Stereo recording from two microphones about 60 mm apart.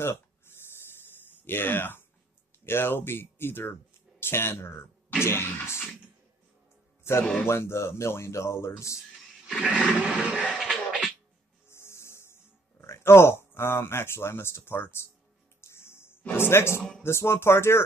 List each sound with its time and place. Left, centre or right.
0.0 s a sound: left
1.3 s speech: left
7.0 s music: left
7.4 s speech: left
9.9 s a sound: right
10.6 s scratching: centre
11.7 s a sound: left
15.6 s music: left
17.0 s speech: left